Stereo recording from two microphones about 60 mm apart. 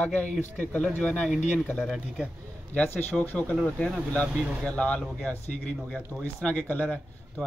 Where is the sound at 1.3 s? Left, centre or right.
Centre.